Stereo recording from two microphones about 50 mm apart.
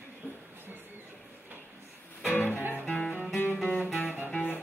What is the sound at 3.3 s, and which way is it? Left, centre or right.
Music, left.